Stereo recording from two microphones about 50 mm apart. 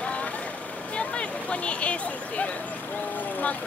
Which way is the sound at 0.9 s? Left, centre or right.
Left.